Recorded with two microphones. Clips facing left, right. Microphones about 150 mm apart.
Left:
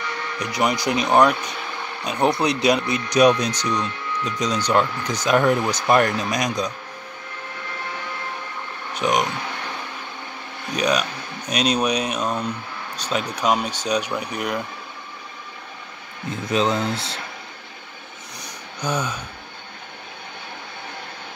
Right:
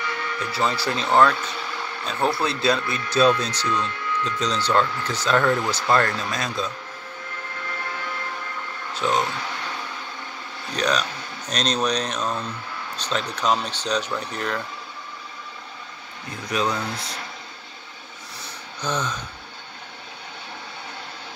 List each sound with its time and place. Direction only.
0.4 s speech: 15° left (ahead or behind)
8.9 s speech: 15° left (ahead or behind)
10.7 s speech: 10° left (ahead or behind)
16.4 s speech: 25° left (ahead or behind)
18.4 s a sound: 10° left (ahead or behind)